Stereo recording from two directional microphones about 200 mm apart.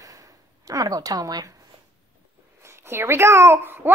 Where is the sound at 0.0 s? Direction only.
15° right (ahead or behind).